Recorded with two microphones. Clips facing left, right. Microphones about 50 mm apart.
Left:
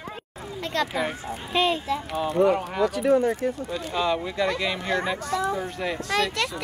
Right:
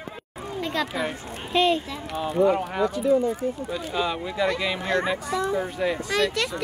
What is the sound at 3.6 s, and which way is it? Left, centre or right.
Speech, centre.